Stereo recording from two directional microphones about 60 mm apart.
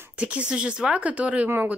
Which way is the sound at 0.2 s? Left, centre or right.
Centre.